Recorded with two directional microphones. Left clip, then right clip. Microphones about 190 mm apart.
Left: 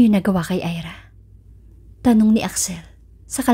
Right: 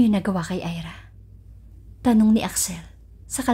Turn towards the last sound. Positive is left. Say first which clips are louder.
# left 4 dB
turn(degrees=20)  # may be behind; listen again after turning